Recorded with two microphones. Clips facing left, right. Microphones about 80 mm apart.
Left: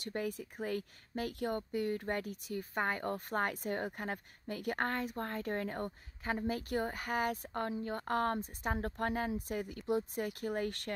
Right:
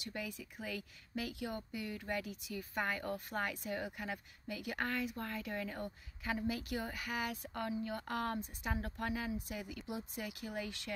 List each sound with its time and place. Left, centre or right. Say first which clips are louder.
0.0 s speech: left 6 dB; left